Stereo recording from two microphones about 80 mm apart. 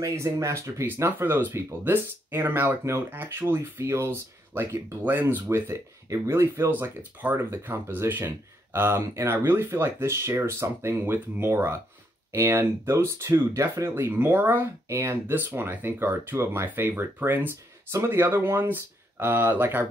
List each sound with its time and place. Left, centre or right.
0.0 s speech: right
6.7 s speech: right
15.3 s speech: right